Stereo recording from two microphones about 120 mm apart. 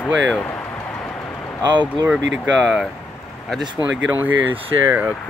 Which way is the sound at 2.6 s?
Centre (ahead or behind).